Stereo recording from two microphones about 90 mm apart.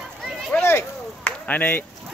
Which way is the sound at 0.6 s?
25° left (ahead or behind).